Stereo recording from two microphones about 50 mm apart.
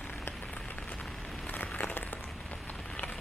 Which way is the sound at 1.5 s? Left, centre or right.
Left.